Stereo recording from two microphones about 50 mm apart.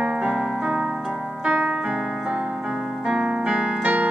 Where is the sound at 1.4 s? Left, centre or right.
Right.